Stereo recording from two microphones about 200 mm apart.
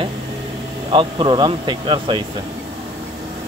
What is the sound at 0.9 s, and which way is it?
Speech, 25° right (ahead or behind).